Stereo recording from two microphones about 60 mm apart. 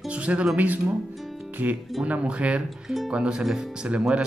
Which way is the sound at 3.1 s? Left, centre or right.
Centre.